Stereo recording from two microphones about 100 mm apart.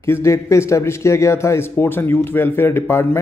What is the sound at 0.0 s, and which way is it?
Speech, 30° left (ahead or behind).